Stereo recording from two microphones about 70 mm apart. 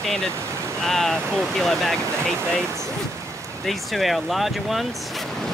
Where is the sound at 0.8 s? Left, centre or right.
Centre.